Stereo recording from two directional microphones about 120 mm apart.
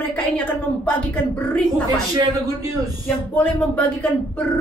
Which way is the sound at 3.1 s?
15° left (ahead or behind).